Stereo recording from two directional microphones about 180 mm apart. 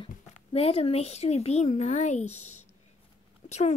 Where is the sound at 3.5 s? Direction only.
40° left (ahead or behind).